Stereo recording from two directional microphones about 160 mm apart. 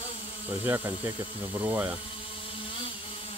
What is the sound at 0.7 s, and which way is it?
Speech, 15° right (ahead or behind).